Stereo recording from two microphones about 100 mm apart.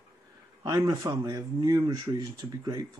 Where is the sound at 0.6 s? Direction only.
40° right (ahead or behind).